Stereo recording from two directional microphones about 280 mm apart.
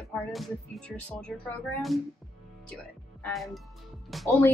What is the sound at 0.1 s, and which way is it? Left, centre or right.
Speech, centre.